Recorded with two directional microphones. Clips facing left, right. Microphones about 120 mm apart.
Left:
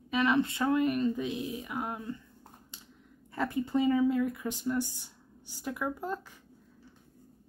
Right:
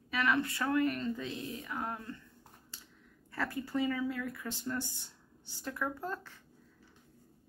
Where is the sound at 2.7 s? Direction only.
20° left (ahead or behind).